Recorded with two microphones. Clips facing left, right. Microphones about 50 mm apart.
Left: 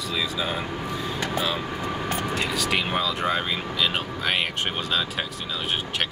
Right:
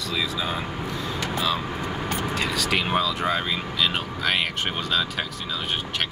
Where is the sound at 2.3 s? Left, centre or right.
Centre.